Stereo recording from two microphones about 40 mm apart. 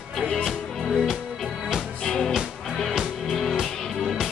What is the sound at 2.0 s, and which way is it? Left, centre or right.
Music, centre.